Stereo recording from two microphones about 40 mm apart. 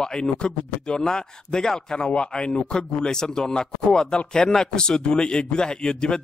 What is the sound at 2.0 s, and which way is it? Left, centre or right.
A man's voice, left.